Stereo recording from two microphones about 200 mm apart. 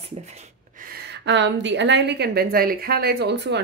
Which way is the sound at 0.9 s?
55° right (ahead or behind).